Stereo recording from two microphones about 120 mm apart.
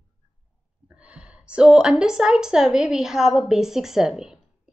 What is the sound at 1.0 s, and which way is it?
A woman's voice, 10° right (ahead or behind).